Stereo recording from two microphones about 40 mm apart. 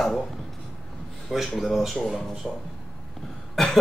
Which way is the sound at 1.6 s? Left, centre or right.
Centre.